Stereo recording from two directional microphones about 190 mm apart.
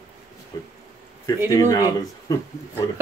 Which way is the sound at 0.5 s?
20° left (ahead or behind).